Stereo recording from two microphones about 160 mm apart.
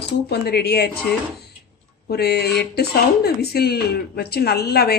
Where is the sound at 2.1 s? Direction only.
90° left.